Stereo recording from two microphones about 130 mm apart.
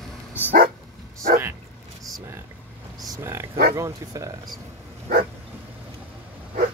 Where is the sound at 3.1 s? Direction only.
20° right (ahead or behind).